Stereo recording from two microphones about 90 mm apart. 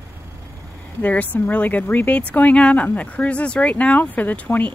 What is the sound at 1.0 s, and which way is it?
A woman's voice, 20° left (ahead or behind).